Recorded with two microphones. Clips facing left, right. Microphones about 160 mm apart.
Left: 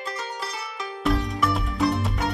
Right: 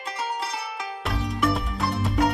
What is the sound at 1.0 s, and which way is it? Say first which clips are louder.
Music: left 3 dB; centre (ahead or behind).